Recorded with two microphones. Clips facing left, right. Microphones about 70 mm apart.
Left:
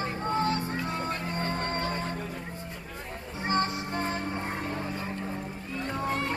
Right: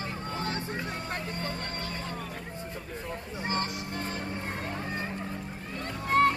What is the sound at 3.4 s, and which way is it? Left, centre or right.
Music, left.